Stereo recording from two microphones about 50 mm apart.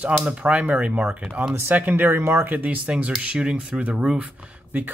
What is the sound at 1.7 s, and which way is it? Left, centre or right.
Speech, right.